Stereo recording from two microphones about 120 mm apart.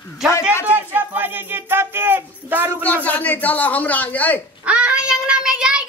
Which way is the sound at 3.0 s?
15° left (ahead or behind).